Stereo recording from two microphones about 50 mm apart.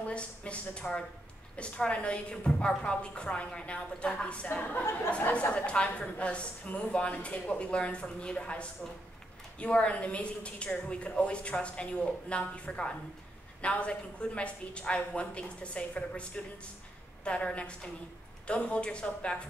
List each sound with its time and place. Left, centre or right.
0.0 s a woman's voice: left